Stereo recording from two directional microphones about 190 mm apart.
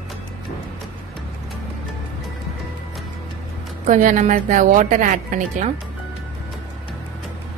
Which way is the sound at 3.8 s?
40° right (ahead or behind).